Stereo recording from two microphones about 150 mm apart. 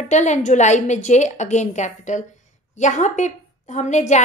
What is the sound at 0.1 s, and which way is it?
A woman's voice, 50° left (ahead or behind).